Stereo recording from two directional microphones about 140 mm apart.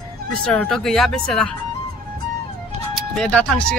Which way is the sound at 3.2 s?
5° left (ahead or behind).